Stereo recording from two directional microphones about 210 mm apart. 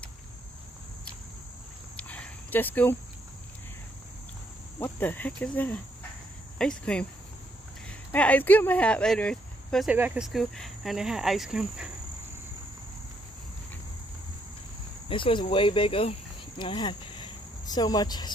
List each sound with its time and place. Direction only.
2.0 s cricket: 5° left (ahead or behind)
4.7 s cricket: 10° left (ahead or behind)
6.6 s speech: 5° left (ahead or behind)
8.1 s speech: 10° left (ahead or behind)
15.0 s speech: 25° left (ahead or behind)